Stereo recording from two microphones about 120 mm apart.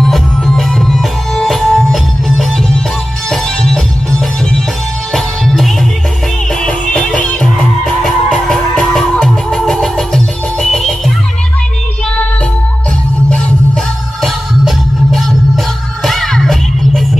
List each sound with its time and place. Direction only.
0.0 s music: 5° left (ahead or behind)
5.1 s music: centre (ahead or behind)
14.2 s music: centre (ahead or behind)